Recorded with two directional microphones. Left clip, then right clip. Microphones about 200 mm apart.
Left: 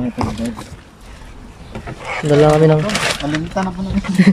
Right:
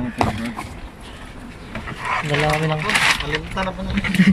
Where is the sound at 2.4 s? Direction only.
35° left (ahead or behind).